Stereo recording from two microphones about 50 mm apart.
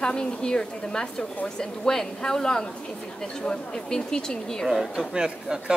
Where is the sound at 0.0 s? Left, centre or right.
Centre.